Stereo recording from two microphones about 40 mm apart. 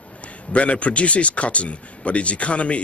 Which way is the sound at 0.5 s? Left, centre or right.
Left.